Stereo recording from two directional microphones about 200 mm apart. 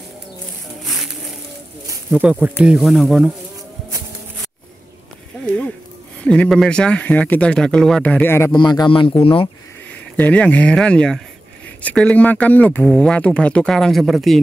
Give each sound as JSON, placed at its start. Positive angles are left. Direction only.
{"t": 0.8, "sound": "music", "side_deg": 0}
{"t": 2.0, "sound": "speech", "side_deg": -5}
{"t": 6.2, "sound": "speech", "side_deg": 5}
{"t": 8.6, "sound": "a man's voice", "side_deg": 20}
{"t": 10.1, "sound": "speech", "side_deg": 5}